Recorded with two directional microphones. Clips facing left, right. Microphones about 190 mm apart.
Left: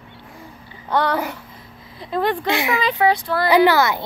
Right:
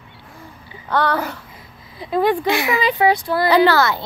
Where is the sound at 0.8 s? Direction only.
15° left (ahead or behind).